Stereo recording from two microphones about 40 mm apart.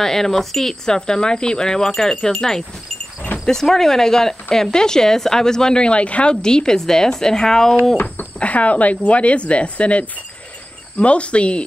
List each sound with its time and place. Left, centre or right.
0.0 s speech: centre; by 6.3 s left
6.4 s speech: centre
8.4 s speech: left